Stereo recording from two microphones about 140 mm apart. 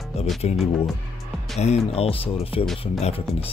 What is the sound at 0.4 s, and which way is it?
Speech, 55° left (ahead or behind).